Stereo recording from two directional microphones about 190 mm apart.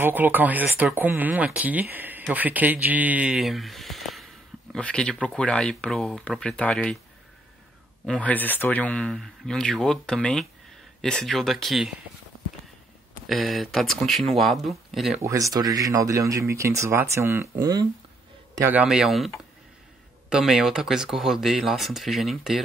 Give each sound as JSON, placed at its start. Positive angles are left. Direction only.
{"t": 0.0, "sound": "speech", "side_deg": -10}
{"t": 8.0, "sound": "speech", "side_deg": 5}
{"t": 13.3, "sound": "speech", "side_deg": 0}
{"t": 15.2, "sound": "speech", "side_deg": -15}